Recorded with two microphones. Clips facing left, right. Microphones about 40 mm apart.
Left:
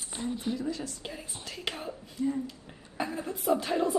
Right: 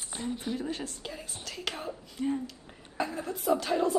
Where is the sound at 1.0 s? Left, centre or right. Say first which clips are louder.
Even; centre.